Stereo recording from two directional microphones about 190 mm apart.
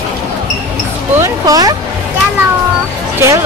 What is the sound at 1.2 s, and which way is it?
Speech, 20° right (ahead or behind).